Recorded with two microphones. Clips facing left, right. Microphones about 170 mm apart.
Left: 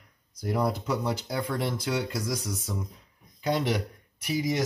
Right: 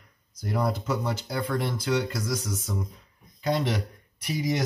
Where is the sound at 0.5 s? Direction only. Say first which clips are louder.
Even; 15° left (ahead or behind).